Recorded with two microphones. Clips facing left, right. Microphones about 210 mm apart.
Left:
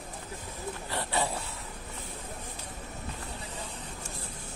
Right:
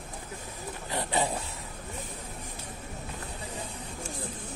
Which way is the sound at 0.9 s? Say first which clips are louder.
Right 3 dB; 20° right (ahead or behind).